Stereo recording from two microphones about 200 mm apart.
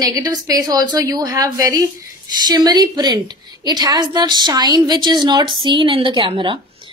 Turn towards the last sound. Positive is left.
turn(degrees=-25)  # may be behind; listen again after turning